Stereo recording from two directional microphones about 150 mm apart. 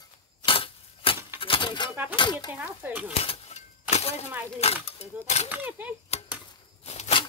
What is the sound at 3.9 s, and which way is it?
Crack, 45° left (ahead or behind).